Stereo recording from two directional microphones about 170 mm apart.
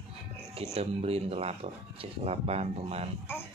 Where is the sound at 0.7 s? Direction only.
35° right (ahead or behind).